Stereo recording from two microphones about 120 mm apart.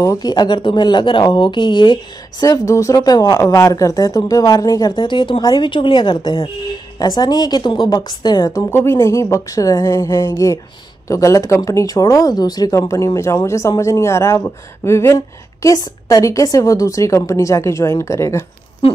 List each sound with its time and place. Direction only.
0.0 s speech: 30° left (ahead or behind)
2.4 s speech: 30° left (ahead or behind)